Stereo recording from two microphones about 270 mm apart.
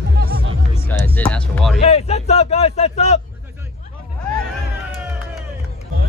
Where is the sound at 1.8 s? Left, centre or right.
Left.